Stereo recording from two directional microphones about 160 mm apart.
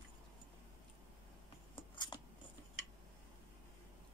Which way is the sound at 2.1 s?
25° left (ahead or behind).